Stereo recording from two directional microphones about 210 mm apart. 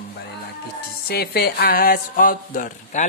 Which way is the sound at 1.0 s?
50° left (ahead or behind).